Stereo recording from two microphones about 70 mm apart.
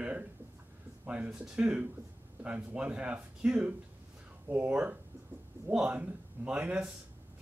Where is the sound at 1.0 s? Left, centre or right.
Centre.